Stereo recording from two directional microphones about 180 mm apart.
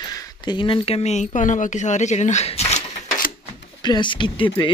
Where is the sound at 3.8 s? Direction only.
25° left (ahead or behind).